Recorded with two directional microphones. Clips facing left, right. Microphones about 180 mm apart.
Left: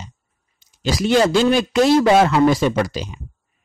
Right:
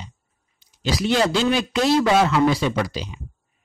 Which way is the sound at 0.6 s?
45° left (ahead or behind).